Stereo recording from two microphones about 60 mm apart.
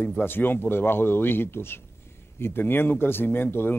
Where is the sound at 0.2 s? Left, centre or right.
Left.